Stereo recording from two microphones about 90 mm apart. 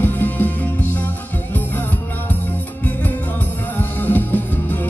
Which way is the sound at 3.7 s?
20° left (ahead or behind).